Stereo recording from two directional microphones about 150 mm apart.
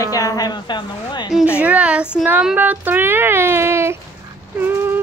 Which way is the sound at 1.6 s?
10° right (ahead or behind).